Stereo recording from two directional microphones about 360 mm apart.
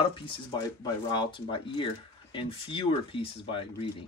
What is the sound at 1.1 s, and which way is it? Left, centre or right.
Speech, centre.